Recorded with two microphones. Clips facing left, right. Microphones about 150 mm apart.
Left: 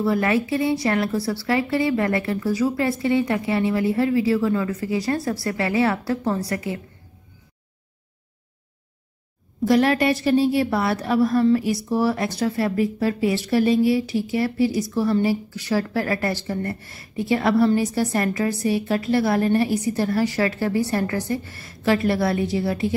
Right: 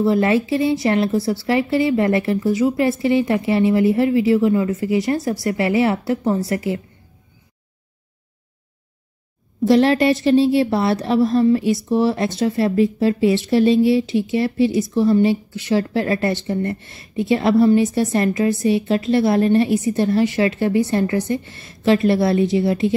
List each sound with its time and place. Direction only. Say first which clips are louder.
0.0 s a woman's voice: right 4 dB; 25° right (ahead or behind)
9.7 s a woman's voice: right 4 dB; 25° right (ahead or behind)